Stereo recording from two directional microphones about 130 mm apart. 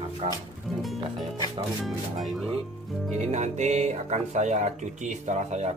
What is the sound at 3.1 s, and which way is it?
Speech, 60° right (ahead or behind).